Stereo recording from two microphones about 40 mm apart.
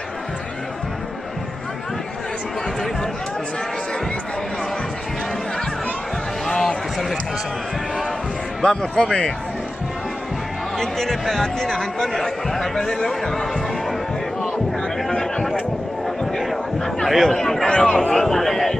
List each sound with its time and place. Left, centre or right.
6.5 s a sound: centre
8.6 s speech: centre
10.8 s speech: centre
15.0 s a man's voice: centre
17.6 s speech: left
18.1 s speech: centre